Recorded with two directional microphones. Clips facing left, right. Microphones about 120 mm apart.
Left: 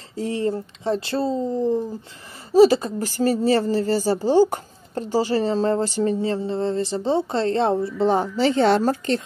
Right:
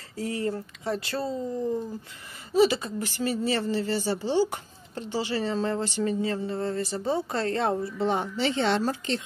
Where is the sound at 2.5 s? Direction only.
40° left (ahead or behind).